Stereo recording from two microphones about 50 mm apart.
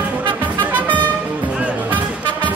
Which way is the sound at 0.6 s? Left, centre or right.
Right.